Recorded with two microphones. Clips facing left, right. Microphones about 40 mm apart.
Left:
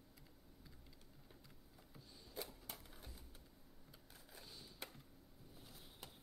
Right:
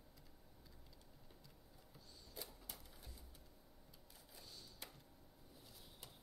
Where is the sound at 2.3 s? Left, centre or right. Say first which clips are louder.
Left 4 dB; left.